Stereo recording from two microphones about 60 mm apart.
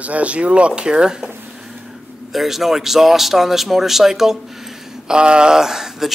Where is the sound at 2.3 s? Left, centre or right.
Centre.